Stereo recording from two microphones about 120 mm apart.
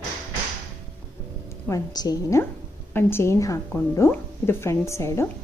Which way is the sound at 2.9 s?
20° left (ahead or behind).